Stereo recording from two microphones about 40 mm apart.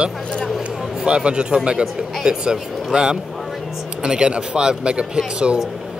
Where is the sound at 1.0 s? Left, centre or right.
Right.